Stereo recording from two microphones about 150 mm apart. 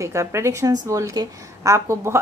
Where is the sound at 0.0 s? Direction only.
20° right (ahead or behind).